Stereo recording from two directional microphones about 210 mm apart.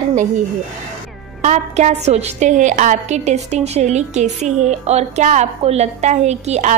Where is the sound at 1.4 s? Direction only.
35° right (ahead or behind).